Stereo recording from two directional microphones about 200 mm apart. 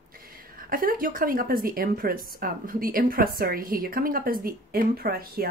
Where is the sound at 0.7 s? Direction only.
45° right (ahead or behind).